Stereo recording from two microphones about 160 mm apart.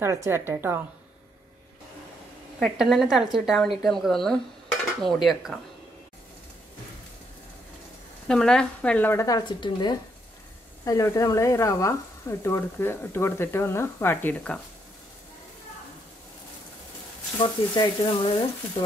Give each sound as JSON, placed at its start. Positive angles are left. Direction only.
{"t": 0.0, "sound": "a woman's voice", "side_deg": -20}
{"t": 2.6, "sound": "a woman's voice", "side_deg": 0}
{"t": 8.3, "sound": "speech", "side_deg": 5}
{"t": 17.4, "sound": "speech", "side_deg": 30}